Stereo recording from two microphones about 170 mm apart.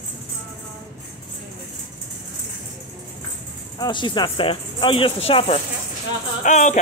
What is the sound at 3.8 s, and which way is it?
Speech, 25° left (ahead or behind).